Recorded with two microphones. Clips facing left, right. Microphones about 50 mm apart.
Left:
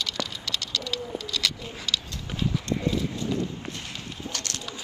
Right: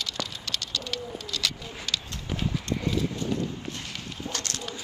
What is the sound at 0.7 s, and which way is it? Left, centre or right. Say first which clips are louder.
Bird: left 2 dB; right.